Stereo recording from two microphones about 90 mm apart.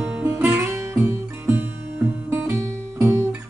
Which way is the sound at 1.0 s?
25° right (ahead or behind).